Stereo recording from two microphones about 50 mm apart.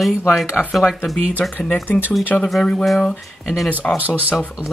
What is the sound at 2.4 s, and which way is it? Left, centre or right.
Speech, centre.